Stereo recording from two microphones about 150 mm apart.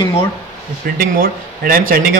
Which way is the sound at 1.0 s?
70° right (ahead or behind).